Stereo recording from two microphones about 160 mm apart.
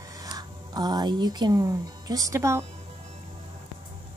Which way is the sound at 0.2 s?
25° right (ahead or behind).